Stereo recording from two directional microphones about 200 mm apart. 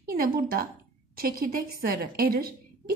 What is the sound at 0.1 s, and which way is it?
A woman's voice, 45° right (ahead or behind).